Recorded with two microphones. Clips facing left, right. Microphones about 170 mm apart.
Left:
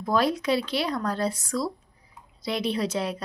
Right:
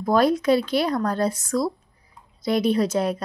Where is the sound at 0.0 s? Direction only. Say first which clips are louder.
Right 5 dB; 45° right (ahead or behind).